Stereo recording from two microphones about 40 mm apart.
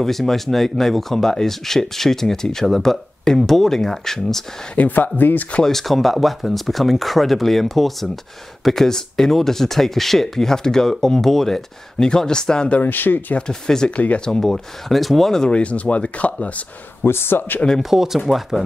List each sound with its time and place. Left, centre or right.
0.0 s speech: centre
4.7 s speech: left
5.6 s speech: centre
12.8 s speech: left
13.5 s speech: centre
13.8 s speech: left
14.4 s speech: centre
15.5 s speech: left
17.0 s speech: left
17.8 s speech: centre